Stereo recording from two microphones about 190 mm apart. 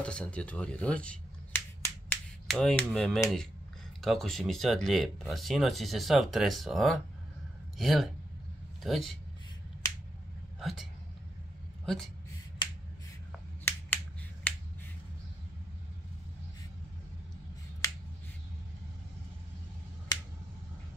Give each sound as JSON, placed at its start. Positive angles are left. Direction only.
{"t": 0.0, "sound": "finger snapping", "side_deg": 5}
{"t": 4.0, "sound": "speech", "side_deg": 0}
{"t": 9.8, "sound": "finger snapping", "side_deg": 15}
{"t": 10.6, "sound": "speech", "side_deg": 0}
{"t": 14.5, "sound": "finger snapping", "side_deg": 10}
{"t": 17.8, "sound": "finger snapping", "side_deg": 15}